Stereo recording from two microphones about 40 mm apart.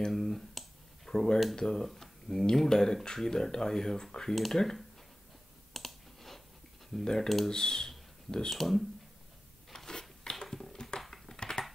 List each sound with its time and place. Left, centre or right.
0.1 s a sound: centre
1.6 s speech: centre
5.7 s clicking: centre
6.9 s speech: centre
7.5 s speech: centre
8.5 s speech: centre
9.7 s biting: centre
10.4 s a sound: centre
11.0 s typing: centre